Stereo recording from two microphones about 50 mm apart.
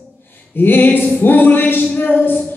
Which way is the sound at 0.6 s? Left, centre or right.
Left.